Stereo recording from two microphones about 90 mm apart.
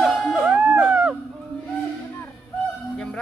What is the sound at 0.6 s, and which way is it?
Music, 15° right (ahead or behind).